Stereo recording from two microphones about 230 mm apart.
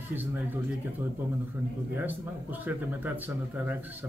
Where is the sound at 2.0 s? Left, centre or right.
Centre.